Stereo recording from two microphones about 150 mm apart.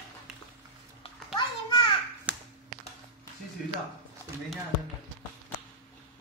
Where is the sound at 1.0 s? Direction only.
30° left (ahead or behind).